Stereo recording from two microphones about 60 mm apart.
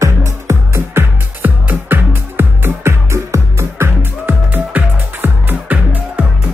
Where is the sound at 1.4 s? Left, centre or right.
Right.